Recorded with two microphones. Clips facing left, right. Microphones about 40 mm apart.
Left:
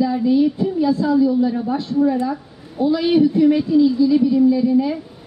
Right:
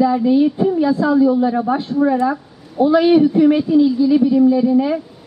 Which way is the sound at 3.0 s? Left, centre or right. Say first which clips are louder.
Even; right.